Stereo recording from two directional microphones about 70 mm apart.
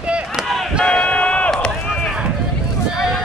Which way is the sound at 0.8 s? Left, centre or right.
Centre.